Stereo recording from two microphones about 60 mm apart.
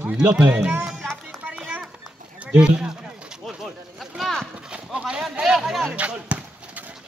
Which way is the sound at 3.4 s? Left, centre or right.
Centre.